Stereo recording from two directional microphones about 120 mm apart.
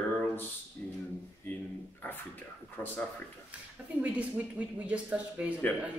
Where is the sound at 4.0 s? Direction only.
15° right (ahead or behind).